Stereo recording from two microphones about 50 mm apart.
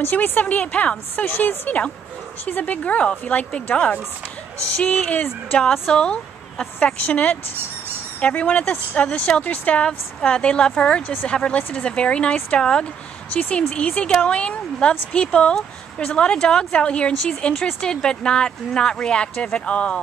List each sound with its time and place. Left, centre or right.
0.1 s a woman's voice: left
4.7 s a woman's voice: left
5.6 s speech: centre
7.1 s a woman's voice: left